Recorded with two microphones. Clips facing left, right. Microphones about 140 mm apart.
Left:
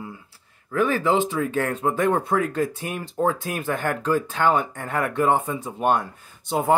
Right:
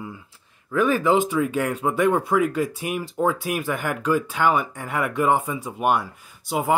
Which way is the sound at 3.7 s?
15° right (ahead or behind).